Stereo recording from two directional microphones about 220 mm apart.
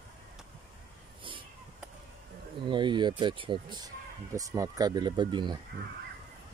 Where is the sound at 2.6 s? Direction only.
20° right (ahead or behind).